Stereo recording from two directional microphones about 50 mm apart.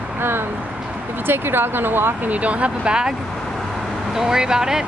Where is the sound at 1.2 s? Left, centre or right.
Right.